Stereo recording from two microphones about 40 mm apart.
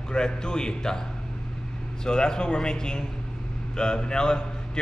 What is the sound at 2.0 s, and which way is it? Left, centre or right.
A man's voice, centre.